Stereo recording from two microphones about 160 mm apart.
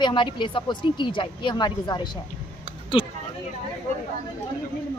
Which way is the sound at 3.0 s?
35° left (ahead or behind).